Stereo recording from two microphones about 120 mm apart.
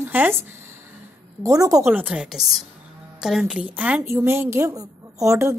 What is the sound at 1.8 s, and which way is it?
A woman's voice, 15° right (ahead or behind).